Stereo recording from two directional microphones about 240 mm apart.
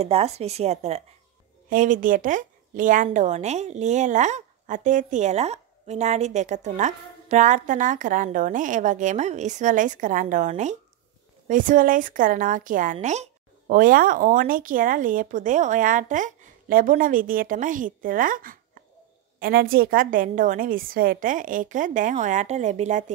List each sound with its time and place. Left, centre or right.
0.0 s speech: right